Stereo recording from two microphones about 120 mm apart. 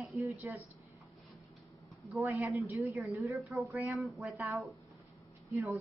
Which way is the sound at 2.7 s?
25° right (ahead or behind).